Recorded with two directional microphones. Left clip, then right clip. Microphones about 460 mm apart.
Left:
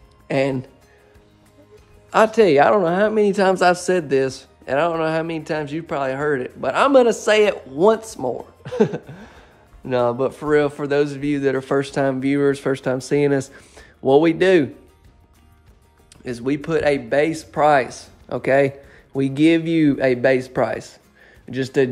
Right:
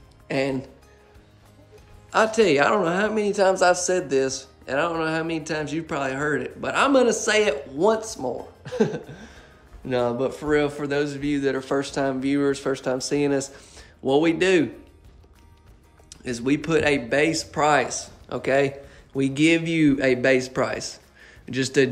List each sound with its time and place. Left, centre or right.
0.3 s speech: centre
2.0 s speech: centre
8.6 s a sound: centre
9.8 s speech: centre
16.1 s speech: centre